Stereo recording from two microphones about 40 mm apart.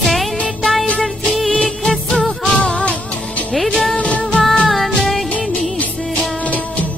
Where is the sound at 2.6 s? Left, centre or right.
Left.